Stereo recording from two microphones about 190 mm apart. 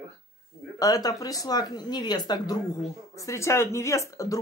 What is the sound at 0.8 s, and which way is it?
Speech, 20° left (ahead or behind).